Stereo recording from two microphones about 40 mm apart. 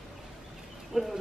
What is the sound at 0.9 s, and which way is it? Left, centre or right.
Bird, centre.